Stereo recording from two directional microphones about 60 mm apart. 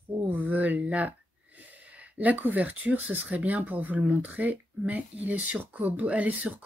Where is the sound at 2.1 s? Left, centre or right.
Right.